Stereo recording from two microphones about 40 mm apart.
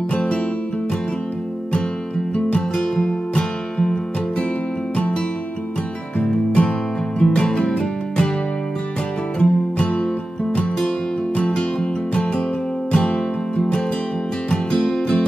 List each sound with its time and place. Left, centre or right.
0.1 s music: left
2.3 s music: left
3.1 s music: centre
6.1 s music: left
9.4 s music: left
11.5 s music: left